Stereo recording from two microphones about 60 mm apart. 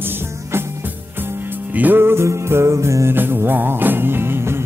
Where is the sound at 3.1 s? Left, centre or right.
Right.